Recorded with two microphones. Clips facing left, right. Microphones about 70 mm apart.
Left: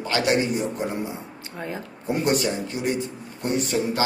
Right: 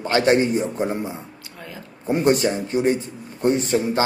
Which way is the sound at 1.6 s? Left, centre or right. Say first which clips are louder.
Left 6 dB; left.